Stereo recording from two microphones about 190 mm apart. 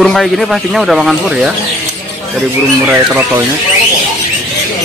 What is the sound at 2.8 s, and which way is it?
Speech, 10° right (ahead or behind).